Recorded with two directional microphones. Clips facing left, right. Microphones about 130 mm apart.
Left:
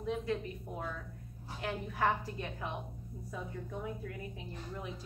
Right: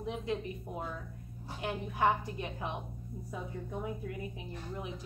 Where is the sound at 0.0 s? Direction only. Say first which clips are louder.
Even; 20° right (ahead or behind).